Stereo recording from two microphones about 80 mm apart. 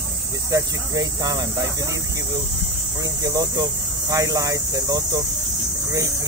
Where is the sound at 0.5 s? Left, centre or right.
Right.